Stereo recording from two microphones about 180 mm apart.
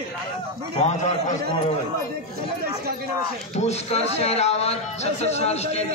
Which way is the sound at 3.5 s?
35° left (ahead or behind).